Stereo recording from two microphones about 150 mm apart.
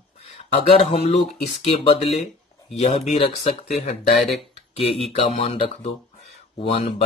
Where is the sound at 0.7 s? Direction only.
40° left (ahead or behind); by 4.2 s 60° left (ahead or behind).